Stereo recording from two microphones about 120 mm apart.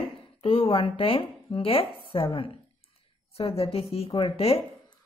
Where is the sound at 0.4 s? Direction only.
50° left (ahead or behind).